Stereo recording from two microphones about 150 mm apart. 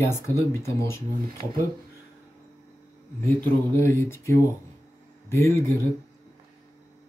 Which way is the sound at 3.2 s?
15° left (ahead or behind).